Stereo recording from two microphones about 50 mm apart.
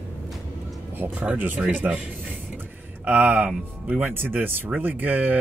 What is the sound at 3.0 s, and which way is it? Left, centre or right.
Speech, right.